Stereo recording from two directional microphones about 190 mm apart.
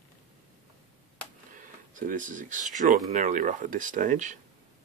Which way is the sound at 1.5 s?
45° right (ahead or behind).